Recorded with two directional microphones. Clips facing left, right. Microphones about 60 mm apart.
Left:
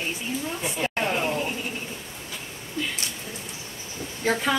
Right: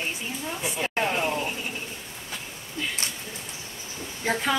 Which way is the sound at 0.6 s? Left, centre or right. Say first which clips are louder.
Right 2 dB; centre.